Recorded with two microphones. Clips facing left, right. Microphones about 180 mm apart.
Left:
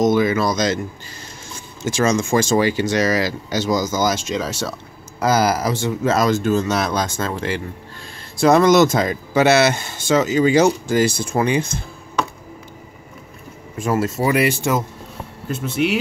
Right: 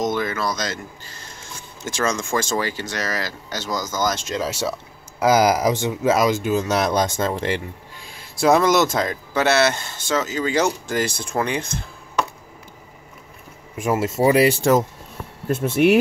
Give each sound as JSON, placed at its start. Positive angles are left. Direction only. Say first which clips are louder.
{"t": 0.0, "sound": "speech", "louder": "left 7 dB", "side_deg": 5}
{"t": 13.7, "sound": "speech", "louder": "even", "side_deg": -20}
{"t": 15.4, "sound": "speech", "louder": "right 4 dB", "side_deg": -55}